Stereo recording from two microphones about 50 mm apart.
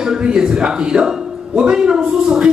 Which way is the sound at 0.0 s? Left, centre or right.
Centre.